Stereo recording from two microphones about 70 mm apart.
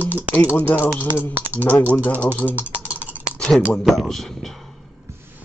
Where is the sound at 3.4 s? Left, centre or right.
Centre.